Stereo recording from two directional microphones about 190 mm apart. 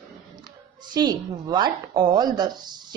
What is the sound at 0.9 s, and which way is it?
A woman's voice, 20° right (ahead or behind).